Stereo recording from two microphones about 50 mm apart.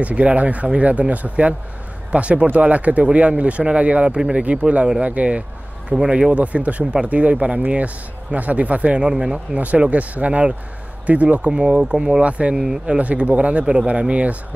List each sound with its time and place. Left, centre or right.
0.0 s speech: right
9.6 s speech: right
12.5 s speech: centre
12.9 s speech: right